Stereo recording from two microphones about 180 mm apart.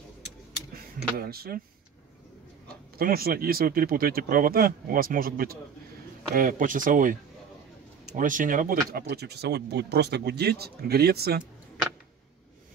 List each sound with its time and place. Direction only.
1.1 s speech: 60° right (ahead or behind)
3.0 s speech: 55° right (ahead or behind)
8.2 s speech: 45° right (ahead or behind)
9.0 s speech: 65° right (ahead or behind)